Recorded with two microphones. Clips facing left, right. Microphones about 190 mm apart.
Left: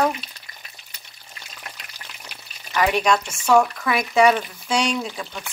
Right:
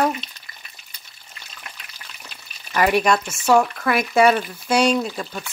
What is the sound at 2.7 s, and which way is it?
Speech, 10° right (ahead or behind).